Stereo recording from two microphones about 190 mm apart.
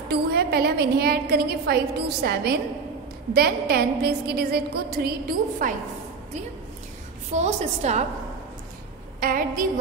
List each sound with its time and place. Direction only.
0.1 s a woman's voice: 55° right (ahead or behind)
7.3 s a woman's voice: 35° right (ahead or behind)
9.2 s a woman's voice: 50° right (ahead or behind)